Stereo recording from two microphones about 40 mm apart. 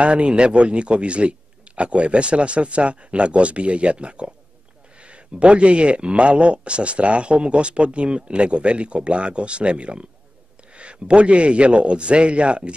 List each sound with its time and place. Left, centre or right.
0.0 s speech: right